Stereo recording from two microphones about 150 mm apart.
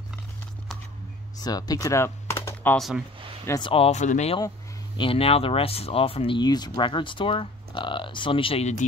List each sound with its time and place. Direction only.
1.4 s speech: 25° left (ahead or behind)
3.5 s speech: 35° left (ahead or behind); by 4.4 s 50° left (ahead or behind)
4.9 s speech: 35° left (ahead or behind)